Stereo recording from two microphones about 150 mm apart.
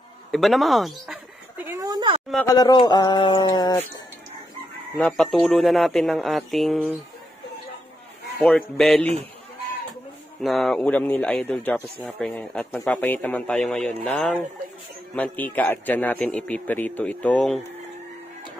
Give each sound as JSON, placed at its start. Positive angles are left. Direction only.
{"t": 0.3, "sound": "speech", "side_deg": 0}
{"t": 1.7, "sound": "a sound", "side_deg": -25}
{"t": 2.4, "sound": "speech", "side_deg": 25}
{"t": 4.9, "sound": "speech", "side_deg": 5}
{"t": 8.4, "sound": "speech", "side_deg": 5}
{"t": 10.4, "sound": "a man's voice", "side_deg": 0}